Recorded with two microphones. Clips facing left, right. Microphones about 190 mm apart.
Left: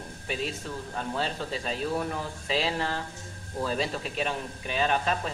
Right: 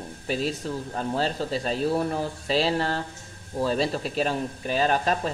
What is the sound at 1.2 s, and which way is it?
Speech, 40° right (ahead or behind).